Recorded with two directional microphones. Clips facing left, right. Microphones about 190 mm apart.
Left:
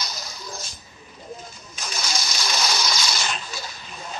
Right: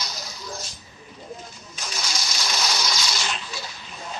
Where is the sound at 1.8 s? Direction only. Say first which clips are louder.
Left 2 dB; 50° left (ahead or behind).